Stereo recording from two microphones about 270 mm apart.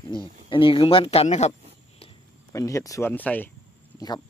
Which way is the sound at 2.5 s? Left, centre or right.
Centre.